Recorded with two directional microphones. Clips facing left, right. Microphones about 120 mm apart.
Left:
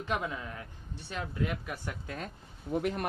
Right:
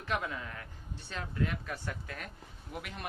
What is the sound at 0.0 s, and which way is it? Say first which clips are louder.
Speech: left 2 dB; 20° left (ahead or behind).